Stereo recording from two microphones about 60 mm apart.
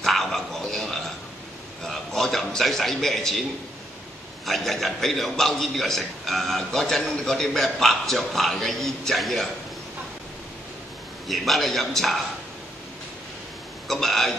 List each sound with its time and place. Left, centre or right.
0.0 s a sound: centre
4.5 s a man's voice: centre
11.2 s a man's voice: centre
13.8 s speech: centre